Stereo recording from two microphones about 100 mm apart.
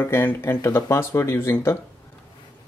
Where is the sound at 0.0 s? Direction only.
20° left (ahead or behind).